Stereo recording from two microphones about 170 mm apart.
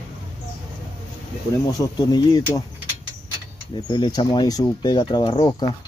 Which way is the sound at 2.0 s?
25° left (ahead or behind).